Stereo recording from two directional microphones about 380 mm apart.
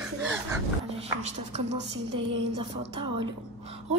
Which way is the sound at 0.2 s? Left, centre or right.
Centre.